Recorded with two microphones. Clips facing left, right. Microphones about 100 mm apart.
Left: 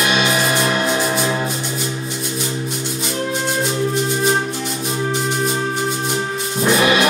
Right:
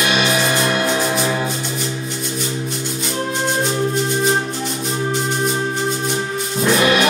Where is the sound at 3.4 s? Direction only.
30° right (ahead or behind).